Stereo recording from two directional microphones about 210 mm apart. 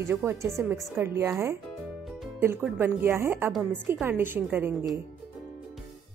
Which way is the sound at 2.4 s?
10° right (ahead or behind).